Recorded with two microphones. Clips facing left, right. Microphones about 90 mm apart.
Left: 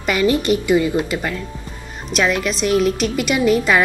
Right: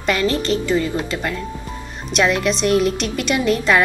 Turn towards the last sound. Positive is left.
turn(degrees=5)  # may be behind; listen again after turning